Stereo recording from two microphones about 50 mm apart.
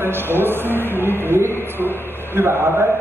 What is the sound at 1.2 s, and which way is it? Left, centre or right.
Speech, right.